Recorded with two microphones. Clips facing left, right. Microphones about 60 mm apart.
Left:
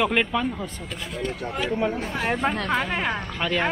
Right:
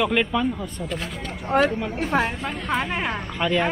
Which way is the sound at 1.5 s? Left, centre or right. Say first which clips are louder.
Right 6 dB; right.